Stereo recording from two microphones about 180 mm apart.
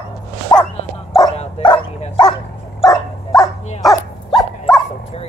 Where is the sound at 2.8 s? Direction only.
20° left (ahead or behind).